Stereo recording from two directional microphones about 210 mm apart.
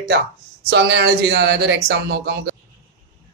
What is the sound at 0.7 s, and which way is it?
Speech, 55° right (ahead or behind).